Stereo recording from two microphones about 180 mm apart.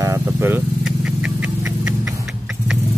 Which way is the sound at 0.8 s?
5° right (ahead or behind).